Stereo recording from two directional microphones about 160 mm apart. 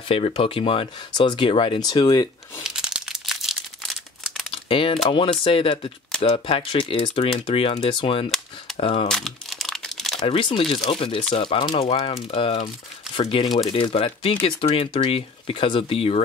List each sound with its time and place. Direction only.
0.1 s speech: 35° left (ahead or behind)
2.6 s crumpling: 5° right (ahead or behind)
4.6 s speech: 35° left (ahead or behind)
9.0 s crumpling: 5° left (ahead or behind)
10.2 s speech: 35° left (ahead or behind)